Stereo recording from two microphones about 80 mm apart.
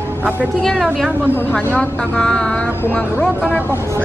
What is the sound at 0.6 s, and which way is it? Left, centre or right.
Speech, centre.